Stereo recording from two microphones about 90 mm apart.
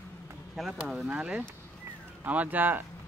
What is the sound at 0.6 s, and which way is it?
Speech, centre (ahead or behind).